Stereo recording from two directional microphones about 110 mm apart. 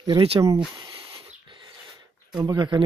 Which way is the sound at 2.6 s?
45° right (ahead or behind).